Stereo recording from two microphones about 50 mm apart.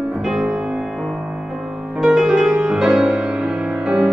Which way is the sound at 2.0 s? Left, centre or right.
Centre.